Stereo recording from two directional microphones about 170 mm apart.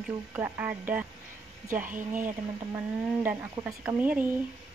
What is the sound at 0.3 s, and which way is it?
Speech, 10° right (ahead or behind).